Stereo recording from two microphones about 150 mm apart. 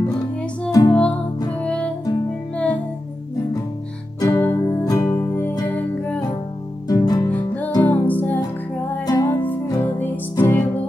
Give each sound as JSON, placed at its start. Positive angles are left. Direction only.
{"t": 0.7, "sound": "music", "side_deg": 20}
{"t": 1.6, "sound": "music", "side_deg": 5}
{"t": 4.2, "sound": "music", "side_deg": 15}
{"t": 6.9, "sound": "music", "side_deg": 25}
{"t": 7.2, "sound": "music", "side_deg": 10}
{"t": 9.0, "sound": "music", "side_deg": 25}
{"t": 9.3, "sound": "music", "side_deg": 10}